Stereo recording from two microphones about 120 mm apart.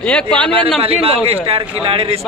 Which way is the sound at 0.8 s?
55° right (ahead or behind).